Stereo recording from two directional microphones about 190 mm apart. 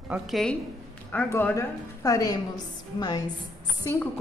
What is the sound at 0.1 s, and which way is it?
A woman's voice, centre (ahead or behind).